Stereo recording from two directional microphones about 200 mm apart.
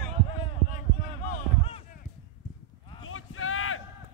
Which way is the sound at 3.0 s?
90° left.